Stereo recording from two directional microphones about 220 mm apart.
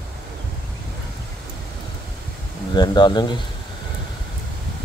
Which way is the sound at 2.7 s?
20° left (ahead or behind).